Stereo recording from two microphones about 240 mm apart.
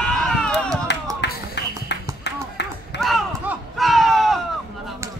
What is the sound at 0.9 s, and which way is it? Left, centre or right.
Music, left.